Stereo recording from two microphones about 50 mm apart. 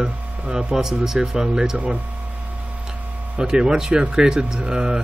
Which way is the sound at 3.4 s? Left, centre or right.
Centre.